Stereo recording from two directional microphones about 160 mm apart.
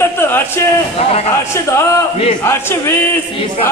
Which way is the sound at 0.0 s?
15° left (ahead or behind).